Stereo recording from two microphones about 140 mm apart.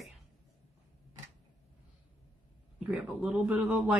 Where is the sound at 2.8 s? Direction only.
10° right (ahead or behind).